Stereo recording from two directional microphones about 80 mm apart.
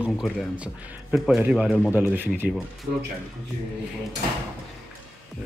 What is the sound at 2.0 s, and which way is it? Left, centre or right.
Speech, right.